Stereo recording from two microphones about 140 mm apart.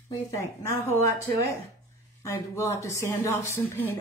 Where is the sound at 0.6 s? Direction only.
20° left (ahead or behind).